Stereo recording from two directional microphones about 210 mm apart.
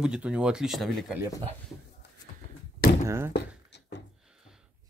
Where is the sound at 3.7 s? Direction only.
55° left (ahead or behind).